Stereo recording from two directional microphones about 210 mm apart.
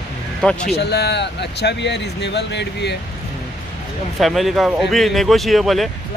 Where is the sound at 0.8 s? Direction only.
55° left (ahead or behind).